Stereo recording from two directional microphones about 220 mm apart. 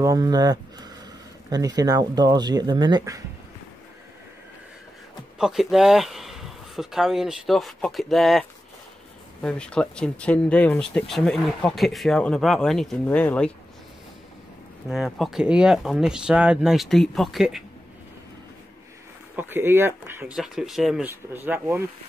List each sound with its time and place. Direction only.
0.0 s speech: 15° right (ahead or behind)
5.4 s speech: centre (ahead or behind)
14.9 s speech: centre (ahead or behind)
19.3 s speech: 10° right (ahead or behind)